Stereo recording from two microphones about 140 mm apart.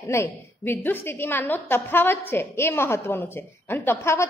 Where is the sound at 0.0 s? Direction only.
20° left (ahead or behind).